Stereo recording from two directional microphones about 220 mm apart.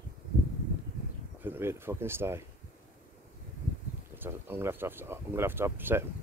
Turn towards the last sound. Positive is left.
turn(degrees=-10)  # may be behind; listen again after turning